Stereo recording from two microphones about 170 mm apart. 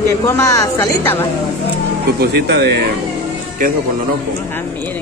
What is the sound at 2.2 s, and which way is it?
Speech, 70° right (ahead or behind).